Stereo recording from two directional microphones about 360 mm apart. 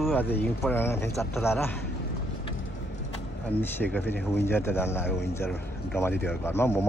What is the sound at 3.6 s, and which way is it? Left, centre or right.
Speech, centre.